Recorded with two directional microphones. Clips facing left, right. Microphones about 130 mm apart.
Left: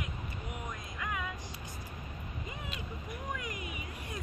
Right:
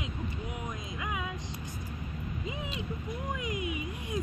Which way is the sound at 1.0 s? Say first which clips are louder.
Right 1 dB; 15° right (ahead or behind).